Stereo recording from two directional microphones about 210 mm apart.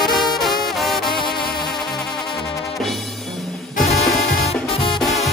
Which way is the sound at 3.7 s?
30° left (ahead or behind).